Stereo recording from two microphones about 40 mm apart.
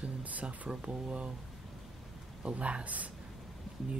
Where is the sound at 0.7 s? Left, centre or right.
Right.